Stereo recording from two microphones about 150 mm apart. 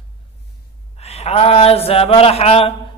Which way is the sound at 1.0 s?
45° left (ahead or behind).